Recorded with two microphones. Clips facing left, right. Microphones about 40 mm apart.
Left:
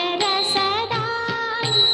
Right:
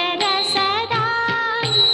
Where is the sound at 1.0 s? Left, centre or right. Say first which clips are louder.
Right 4 dB; right.